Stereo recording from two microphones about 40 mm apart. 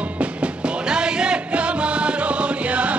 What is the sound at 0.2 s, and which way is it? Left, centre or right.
Music, right.